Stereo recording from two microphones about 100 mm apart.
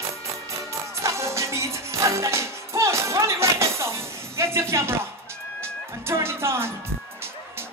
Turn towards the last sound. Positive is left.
turn(degrees=-25)  # may be behind; listen again after turning